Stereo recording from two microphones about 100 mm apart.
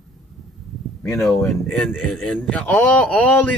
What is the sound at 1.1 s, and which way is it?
Speech, centre (ahead or behind).